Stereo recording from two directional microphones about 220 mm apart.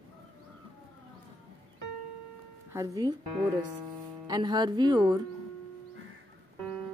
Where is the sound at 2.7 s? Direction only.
15° right (ahead or behind).